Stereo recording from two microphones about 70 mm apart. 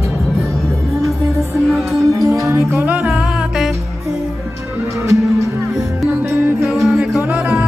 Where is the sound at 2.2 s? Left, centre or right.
Right.